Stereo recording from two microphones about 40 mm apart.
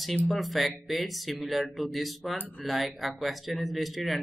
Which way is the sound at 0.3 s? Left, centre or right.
Centre.